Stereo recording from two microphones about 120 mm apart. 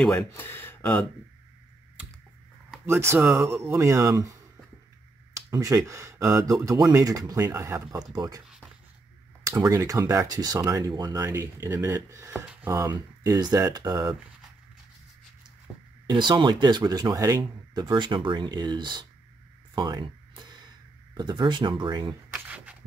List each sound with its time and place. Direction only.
0.3 s speech: 15° left (ahead or behind)
2.9 s speech: 20° right (ahead or behind)
5.5 s speech: 25° right (ahead or behind)
8.1 s speech: 35° right (ahead or behind)
9.5 s speech: 25° right (ahead or behind)
16.1 s speech: 40° right (ahead or behind)
19.7 s a sound: 40° right (ahead or behind)
21.2 s speech: 40° right (ahead or behind)
22.3 s a sound: 15° right (ahead or behind)